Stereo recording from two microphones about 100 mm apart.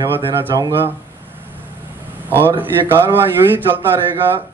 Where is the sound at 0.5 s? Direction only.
40° right (ahead or behind).